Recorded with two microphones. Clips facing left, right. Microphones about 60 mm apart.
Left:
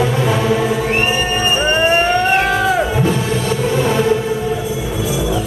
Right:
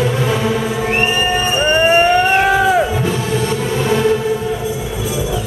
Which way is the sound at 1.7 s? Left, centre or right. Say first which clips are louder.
Right 4 dB; centre.